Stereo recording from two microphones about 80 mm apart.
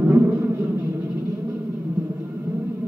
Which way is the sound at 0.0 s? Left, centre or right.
Right.